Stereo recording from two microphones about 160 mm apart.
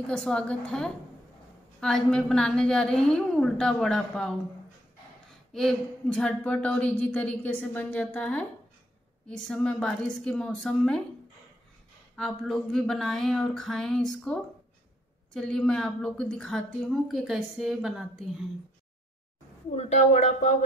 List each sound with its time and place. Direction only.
0.0 s a woman's voice: 5° left (ahead or behind)
5.5 s a woman's voice: 5° left (ahead or behind)
12.2 s a woman's voice: centre (ahead or behind)
19.7 s speech: 40° left (ahead or behind)